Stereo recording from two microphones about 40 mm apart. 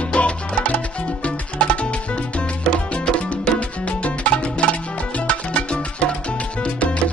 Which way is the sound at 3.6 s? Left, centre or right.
Left.